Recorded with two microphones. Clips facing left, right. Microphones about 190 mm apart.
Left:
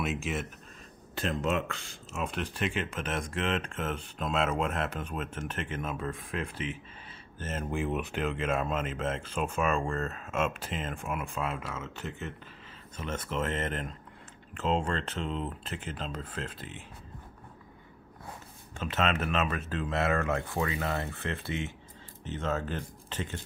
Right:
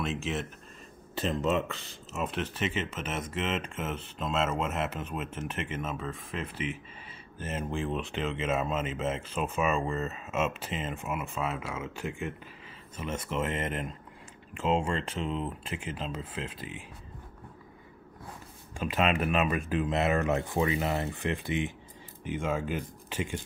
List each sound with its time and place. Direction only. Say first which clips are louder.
0.0 s speech: even; 5° left (ahead or behind)
7.7 s speech: left 2 dB; 5° left (ahead or behind)
18.8 s speech: right 2 dB; 10° right (ahead or behind)